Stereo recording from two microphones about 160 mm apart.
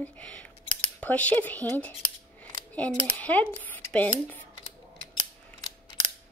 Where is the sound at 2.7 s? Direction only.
10° left (ahead or behind).